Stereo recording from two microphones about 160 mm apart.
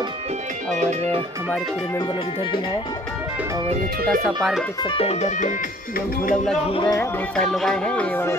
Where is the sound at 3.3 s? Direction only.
20° right (ahead or behind).